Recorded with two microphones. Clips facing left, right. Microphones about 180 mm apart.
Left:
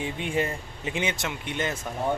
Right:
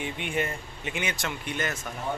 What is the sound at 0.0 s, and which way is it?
Speech, 30° left (ahead or behind).